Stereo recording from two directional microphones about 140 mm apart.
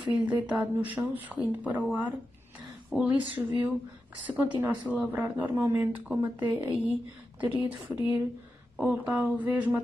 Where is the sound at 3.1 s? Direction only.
35° right (ahead or behind).